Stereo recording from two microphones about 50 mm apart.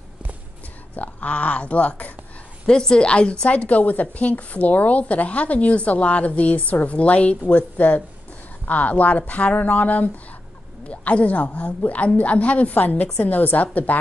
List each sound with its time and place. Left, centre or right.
0.9 s a woman's voice: left
2.6 s a woman's voice: centre; by 13.9 s left